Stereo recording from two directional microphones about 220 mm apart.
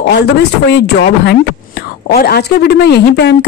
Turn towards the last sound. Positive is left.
turn(degrees=50)  # may be behind; listen again after turning